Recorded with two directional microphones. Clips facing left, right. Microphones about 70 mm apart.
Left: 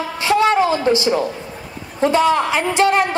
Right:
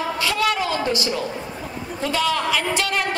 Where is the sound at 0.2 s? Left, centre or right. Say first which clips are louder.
Left 9 dB; left.